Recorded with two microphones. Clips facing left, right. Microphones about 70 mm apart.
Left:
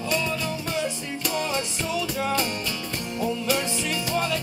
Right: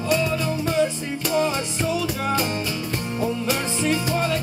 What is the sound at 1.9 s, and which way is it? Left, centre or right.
Music, right.